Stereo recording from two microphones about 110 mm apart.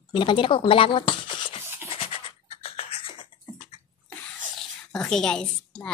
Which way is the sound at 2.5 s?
60° left (ahead or behind).